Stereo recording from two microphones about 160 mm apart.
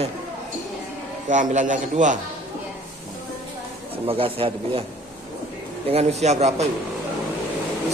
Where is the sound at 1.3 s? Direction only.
50° right (ahead or behind).